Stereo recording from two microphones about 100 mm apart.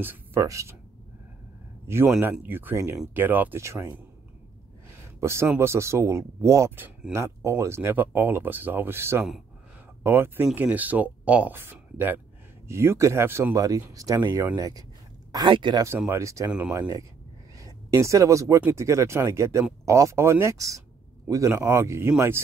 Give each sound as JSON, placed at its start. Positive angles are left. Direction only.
{"t": 0.0, "sound": "speech", "side_deg": -20}
{"t": 0.4, "sound": "speech", "side_deg": -30}
{"t": 1.9, "sound": "speech", "side_deg": -25}
{"t": 5.2, "sound": "speech", "side_deg": -25}
{"t": 13.6, "sound": "speech", "side_deg": -35}
{"t": 15.3, "sound": "speech", "side_deg": -50}
{"t": 16.1, "sound": "speech", "side_deg": -30}
{"t": 17.6, "sound": "speech", "side_deg": -35}